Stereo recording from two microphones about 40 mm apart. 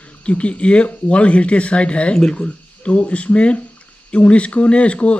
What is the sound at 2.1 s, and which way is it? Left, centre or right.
Speech, centre.